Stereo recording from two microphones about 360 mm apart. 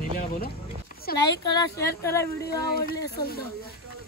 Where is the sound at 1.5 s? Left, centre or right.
Centre.